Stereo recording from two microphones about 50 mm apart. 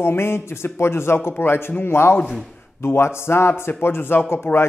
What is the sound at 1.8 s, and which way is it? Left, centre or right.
A man's voice, left.